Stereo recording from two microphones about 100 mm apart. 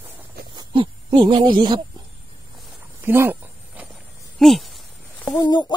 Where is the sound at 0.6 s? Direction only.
55° right (ahead or behind).